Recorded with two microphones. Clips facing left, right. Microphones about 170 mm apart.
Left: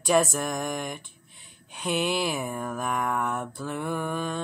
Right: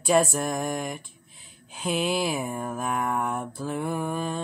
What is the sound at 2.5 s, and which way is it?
Mantra, 25° right (ahead or behind).